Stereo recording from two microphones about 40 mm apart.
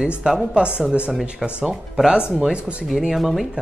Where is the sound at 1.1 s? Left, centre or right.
Centre.